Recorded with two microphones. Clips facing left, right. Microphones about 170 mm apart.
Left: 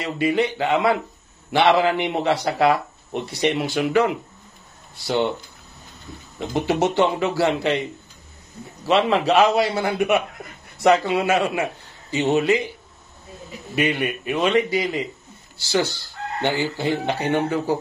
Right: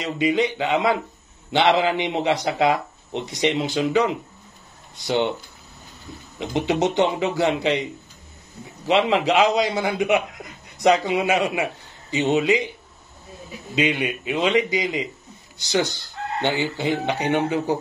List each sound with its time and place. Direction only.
0.0 s speech: 20° right (ahead or behind)
6.4 s a man's voice: 20° right (ahead or behind)
13.7 s speech: 20° right (ahead or behind)